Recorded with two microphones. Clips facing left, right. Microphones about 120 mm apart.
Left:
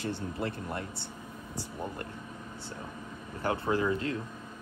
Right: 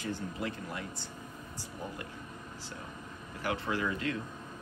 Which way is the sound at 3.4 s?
30° left (ahead or behind).